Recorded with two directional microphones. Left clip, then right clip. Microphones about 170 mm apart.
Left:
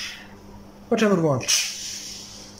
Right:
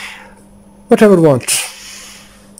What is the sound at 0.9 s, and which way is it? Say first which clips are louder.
Speech: right 12 dB; 75° right (ahead or behind).